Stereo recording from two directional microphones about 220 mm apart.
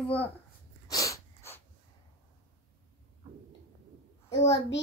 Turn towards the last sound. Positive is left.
turn(degrees=30)  # may be behind; listen again after turning